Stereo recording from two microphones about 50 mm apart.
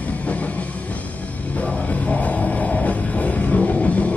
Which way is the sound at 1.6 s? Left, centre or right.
Left.